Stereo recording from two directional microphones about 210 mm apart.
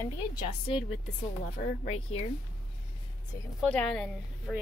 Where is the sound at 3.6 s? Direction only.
5° left (ahead or behind).